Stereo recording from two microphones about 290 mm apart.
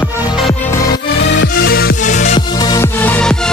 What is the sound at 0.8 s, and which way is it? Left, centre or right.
Music, left.